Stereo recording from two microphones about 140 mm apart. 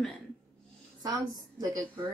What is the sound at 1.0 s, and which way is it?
Speech, 25° right (ahead or behind).